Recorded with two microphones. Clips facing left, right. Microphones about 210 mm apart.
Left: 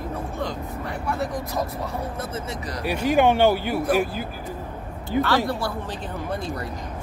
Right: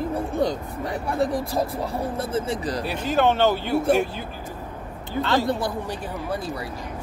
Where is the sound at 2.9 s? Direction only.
15° left (ahead or behind).